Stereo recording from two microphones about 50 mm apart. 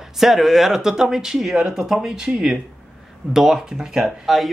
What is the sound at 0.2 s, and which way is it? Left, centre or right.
Speech, centre.